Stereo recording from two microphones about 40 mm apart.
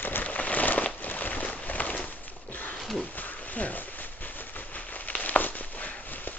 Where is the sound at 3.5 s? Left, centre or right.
Left.